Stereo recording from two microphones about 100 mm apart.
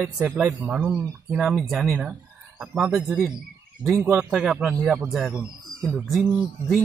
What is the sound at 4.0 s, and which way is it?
Speech, 25° right (ahead or behind).